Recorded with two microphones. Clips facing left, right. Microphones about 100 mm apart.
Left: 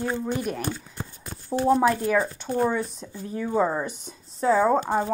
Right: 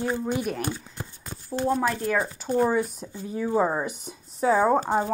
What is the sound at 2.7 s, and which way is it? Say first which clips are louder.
Speech: right 2 dB; 5° right (ahead or behind).